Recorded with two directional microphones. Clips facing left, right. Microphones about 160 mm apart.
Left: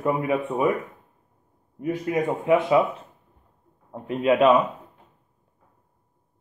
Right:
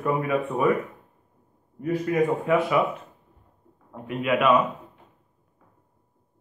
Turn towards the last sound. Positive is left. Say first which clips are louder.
# left 4 dB
turn(degrees=30)  # may be behind; listen again after turning